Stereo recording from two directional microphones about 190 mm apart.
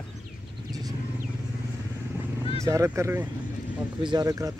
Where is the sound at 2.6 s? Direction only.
15° right (ahead or behind).